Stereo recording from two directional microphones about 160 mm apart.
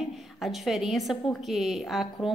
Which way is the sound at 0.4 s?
Centre (ahead or behind).